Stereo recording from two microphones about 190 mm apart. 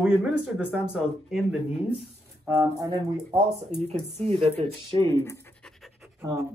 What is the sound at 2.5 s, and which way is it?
Speech, 20° right (ahead or behind).